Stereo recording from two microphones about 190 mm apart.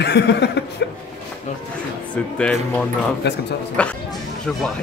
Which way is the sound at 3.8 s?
5° left (ahead or behind).